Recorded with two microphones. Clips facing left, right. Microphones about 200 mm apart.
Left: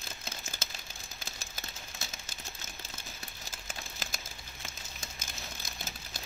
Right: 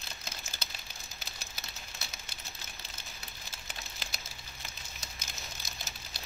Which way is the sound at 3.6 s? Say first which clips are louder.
Left 3 dB; 50° left (ahead or behind).